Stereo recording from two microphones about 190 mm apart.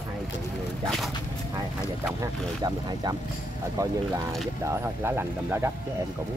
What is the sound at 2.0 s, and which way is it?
Speech, 20° right (ahead or behind).